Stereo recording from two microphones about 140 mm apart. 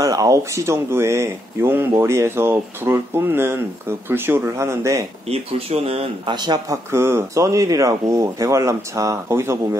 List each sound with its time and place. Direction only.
0.0 s speech: 25° right (ahead or behind)
5.3 s speech: 45° right (ahead or behind)
6.3 s speech: 30° right (ahead or behind)
6.9 s speech: 20° right (ahead or behind)